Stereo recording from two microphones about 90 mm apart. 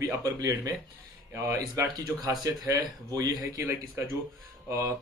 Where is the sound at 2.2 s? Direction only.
45° right (ahead or behind).